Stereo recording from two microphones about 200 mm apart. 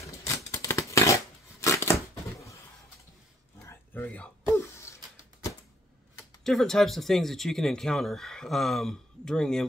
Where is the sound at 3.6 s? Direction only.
10° left (ahead or behind).